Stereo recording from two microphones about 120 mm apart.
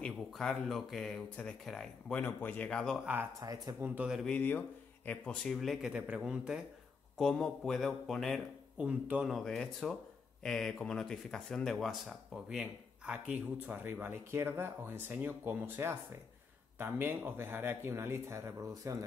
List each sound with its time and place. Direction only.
0.0 s speech: 5° left (ahead or behind)
3.4 s speech: 30° right (ahead or behind)
3.8 s speech: 10° right (ahead or behind)
4.2 s speech: 10° left (ahead or behind)
8.8 s speech: 10° right (ahead or behind)
9.3 s speech: 5° left (ahead or behind); by 19.0 s 25° right (ahead or behind)